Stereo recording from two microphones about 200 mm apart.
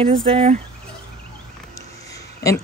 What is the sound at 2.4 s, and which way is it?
Speech, 15° left (ahead or behind).